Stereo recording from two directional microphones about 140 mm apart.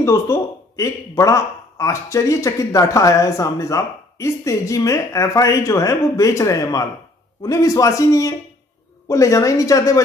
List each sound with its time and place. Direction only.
0.0 s speech: 20° left (ahead or behind)